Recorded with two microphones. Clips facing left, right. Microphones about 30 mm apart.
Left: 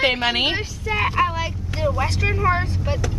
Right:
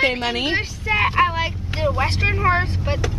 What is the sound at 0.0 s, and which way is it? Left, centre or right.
Speech, centre.